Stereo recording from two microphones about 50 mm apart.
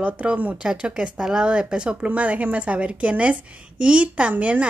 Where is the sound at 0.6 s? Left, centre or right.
Centre.